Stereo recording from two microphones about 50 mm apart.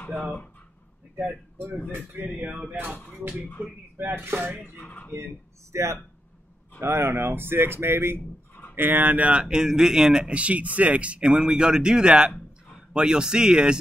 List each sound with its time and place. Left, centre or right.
2.2 s a sound: right
4.0 s speech: right
4.7 s speech: left
5.7 s speech: right
6.8 s speech: right
8.7 s speech: right
9.1 s speech: right
11.4 s speech: centre